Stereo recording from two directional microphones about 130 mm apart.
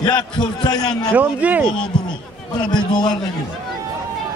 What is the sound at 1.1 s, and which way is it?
Speech, 10° right (ahead or behind).